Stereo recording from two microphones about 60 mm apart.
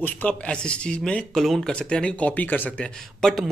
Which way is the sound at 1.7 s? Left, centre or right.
Centre.